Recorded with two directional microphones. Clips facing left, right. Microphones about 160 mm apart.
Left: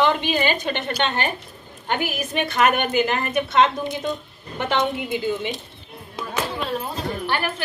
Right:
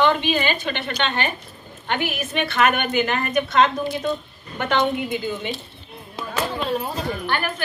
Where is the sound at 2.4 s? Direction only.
15° left (ahead or behind).